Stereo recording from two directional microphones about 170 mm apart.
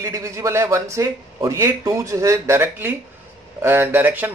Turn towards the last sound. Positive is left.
turn(degrees=-10)  # may be behind; listen again after turning